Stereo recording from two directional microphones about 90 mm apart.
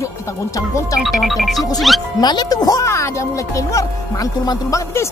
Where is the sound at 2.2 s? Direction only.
50° left (ahead or behind).